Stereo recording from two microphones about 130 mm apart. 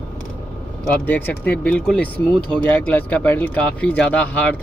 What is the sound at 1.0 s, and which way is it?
Speech, 15° left (ahead or behind).